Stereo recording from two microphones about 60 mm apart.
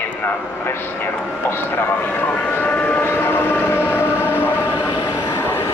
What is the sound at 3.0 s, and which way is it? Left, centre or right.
Train, left.